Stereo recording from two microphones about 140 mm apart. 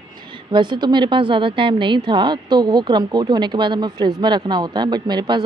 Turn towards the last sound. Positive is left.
turn(degrees=-30)  # may be behind; listen again after turning